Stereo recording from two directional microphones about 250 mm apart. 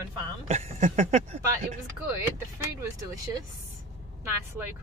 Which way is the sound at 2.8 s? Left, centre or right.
Centre.